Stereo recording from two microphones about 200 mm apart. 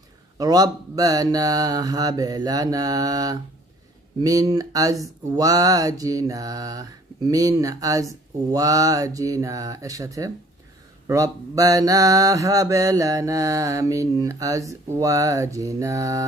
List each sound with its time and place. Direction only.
0.4 s speech: 20° right (ahead or behind)
4.2 s mantra: 15° right (ahead or behind)